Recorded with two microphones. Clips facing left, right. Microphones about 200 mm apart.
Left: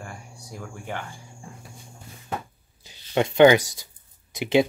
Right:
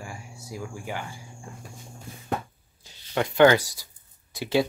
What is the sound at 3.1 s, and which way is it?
Speech, 20° left (ahead or behind).